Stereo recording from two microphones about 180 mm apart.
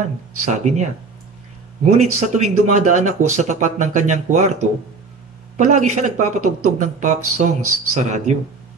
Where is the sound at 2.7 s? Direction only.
45° right (ahead or behind).